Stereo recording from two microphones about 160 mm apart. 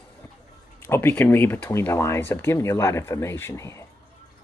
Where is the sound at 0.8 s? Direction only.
15° left (ahead or behind).